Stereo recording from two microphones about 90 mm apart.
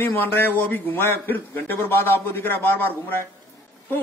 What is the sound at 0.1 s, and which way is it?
A man's voice, 20° left (ahead or behind).